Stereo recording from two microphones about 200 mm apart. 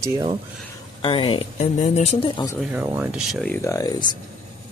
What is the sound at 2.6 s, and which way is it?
Speech, 10° right (ahead or behind).